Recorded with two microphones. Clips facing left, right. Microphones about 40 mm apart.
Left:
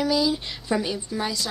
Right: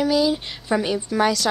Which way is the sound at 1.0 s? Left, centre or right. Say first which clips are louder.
Right 9 dB; right.